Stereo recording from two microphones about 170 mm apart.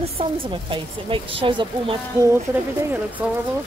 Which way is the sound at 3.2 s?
10° right (ahead or behind).